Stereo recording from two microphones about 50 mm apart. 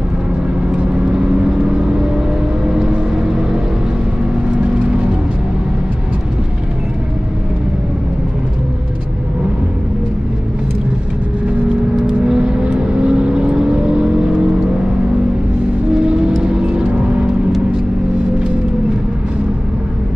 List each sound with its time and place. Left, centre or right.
2.7 s vehicle: centre
12.1 s vehicle: centre
16.5 s music: centre